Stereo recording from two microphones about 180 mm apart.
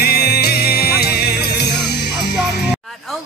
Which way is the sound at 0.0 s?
65° left (ahead or behind).